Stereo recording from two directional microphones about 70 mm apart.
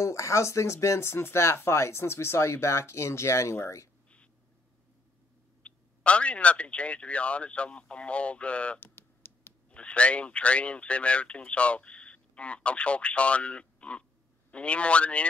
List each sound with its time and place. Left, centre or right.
0.0 s speech: left
5.6 s speech: centre
8.7 s a sound: left
9.7 s speech: centre